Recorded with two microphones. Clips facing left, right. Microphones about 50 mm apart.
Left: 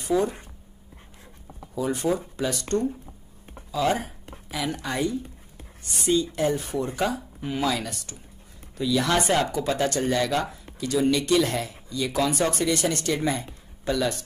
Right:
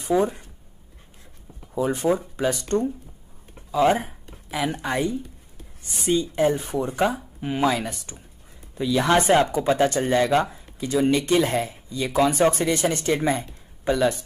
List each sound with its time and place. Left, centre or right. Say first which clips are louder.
0.0 s speech: right 2 dB; right
1.8 s speech: right 3 dB; right
3.7 s speech: right 5 dB; right